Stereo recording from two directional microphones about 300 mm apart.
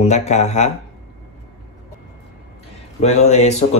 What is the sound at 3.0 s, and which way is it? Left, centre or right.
Speech, left.